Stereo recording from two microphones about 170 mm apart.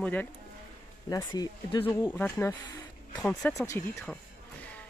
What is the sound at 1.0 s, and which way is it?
Speech, 20° left (ahead or behind).